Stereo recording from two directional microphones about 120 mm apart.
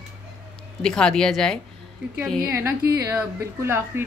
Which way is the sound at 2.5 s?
25° right (ahead or behind).